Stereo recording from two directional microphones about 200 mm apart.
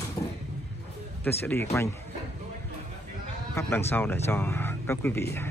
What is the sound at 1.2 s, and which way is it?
Speech, 10° left (ahead or behind).